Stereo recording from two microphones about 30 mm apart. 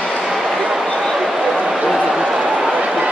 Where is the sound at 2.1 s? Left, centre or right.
Centre.